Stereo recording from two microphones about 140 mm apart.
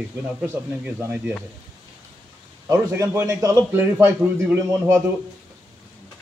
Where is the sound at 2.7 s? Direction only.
25° right (ahead or behind).